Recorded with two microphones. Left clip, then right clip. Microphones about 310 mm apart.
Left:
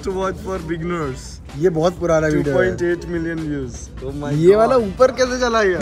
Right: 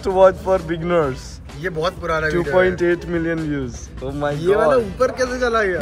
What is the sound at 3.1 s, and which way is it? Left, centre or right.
Speech, right.